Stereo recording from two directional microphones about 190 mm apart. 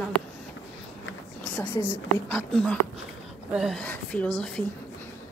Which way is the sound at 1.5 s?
10° left (ahead or behind).